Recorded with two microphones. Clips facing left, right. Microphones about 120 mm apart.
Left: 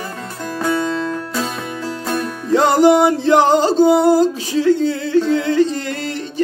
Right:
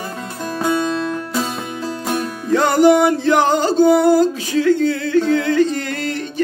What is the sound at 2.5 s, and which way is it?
Music, 25° left (ahead or behind).